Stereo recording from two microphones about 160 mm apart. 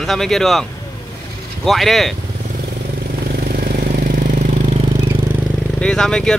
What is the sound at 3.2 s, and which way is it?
Vehicle, 70° right (ahead or behind).